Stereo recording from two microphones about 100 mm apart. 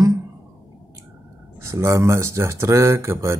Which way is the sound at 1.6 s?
30° right (ahead or behind).